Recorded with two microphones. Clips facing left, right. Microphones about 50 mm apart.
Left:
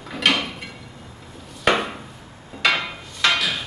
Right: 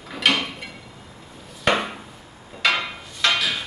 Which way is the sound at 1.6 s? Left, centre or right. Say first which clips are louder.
Left 1 dB; centre.